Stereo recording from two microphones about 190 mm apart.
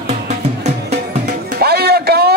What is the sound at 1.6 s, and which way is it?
Music, 55° right (ahead or behind).